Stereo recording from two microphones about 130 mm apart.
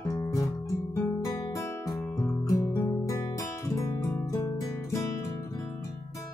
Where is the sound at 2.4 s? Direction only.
25° left (ahead or behind).